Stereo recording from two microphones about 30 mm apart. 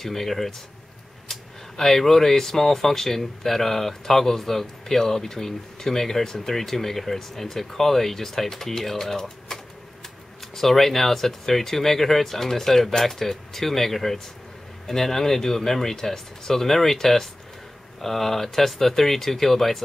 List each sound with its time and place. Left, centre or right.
0.0 s speech: centre
9.5 s a sound: left
10.5 s speech: centre